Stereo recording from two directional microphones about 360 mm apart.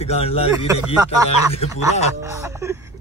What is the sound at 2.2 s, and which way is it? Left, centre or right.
Speech, centre.